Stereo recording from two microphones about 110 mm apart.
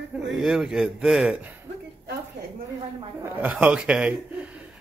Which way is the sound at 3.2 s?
15° right (ahead or behind).